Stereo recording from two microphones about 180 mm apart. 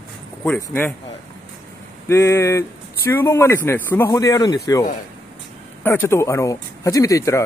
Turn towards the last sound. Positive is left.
turn(degrees=15)  # may be behind; listen again after turning